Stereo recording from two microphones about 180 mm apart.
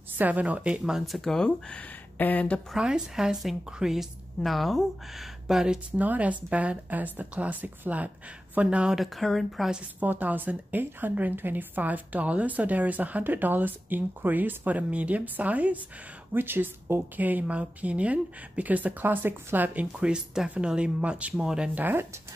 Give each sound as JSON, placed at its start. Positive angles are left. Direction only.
{"t": 0.2, "sound": "a woman's voice", "side_deg": -10}
{"t": 2.8, "sound": "a woman's voice", "side_deg": -5}